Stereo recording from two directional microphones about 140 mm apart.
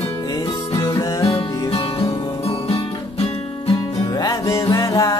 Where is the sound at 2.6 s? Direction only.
45° left (ahead or behind).